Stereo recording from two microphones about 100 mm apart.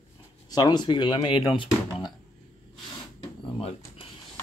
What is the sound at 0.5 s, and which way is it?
Speech, 45° left (ahead or behind).